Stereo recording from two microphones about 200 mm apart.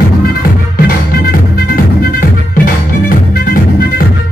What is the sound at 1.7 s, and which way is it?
Music, 45° left (ahead or behind).